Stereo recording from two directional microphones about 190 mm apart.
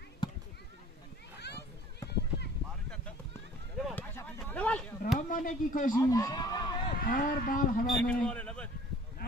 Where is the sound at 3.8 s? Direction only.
10° left (ahead or behind).